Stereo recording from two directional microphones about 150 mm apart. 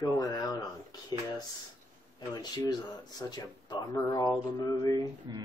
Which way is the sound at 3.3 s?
25° left (ahead or behind).